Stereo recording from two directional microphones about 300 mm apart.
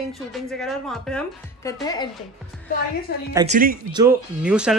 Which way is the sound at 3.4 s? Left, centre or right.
Right.